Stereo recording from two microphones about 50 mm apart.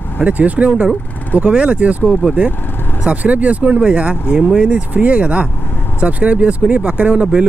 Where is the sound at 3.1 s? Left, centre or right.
Right.